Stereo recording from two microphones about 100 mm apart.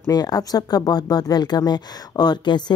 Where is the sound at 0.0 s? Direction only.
40° left (ahead or behind).